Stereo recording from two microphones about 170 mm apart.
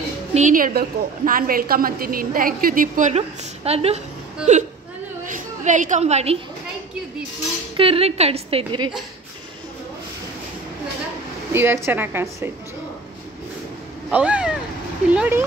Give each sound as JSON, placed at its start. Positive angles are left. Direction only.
{"t": 0.3, "sound": "a woman's voice", "side_deg": -45}
{"t": 5.2, "sound": "a sound", "side_deg": -50}
{"t": 7.7, "sound": "a woman's voice", "side_deg": -35}
{"t": 11.5, "sound": "a woman's voice", "side_deg": -15}
{"t": 14.1, "sound": "a woman's voice", "side_deg": -5}